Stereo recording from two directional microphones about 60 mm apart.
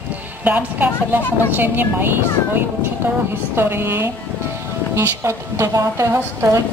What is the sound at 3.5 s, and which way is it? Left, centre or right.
A woman's voice, right.